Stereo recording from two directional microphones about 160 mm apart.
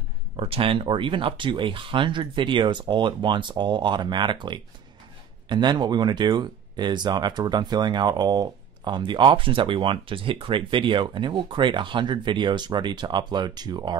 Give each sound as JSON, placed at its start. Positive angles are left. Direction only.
{"t": 0.4, "sound": "speech", "side_deg": -35}